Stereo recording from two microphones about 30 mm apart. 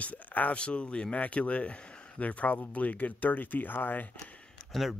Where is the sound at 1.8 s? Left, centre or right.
Left.